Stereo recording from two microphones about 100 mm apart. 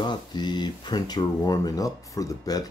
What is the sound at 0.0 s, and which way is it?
Speech, 45° left (ahead or behind).